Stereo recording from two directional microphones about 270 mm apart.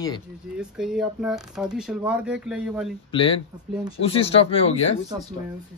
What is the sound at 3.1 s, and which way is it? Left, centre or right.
Speech, centre.